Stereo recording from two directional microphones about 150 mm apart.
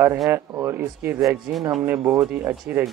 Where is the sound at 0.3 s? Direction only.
15° right (ahead or behind).